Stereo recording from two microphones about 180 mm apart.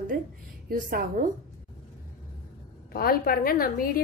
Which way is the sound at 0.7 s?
55° right (ahead or behind).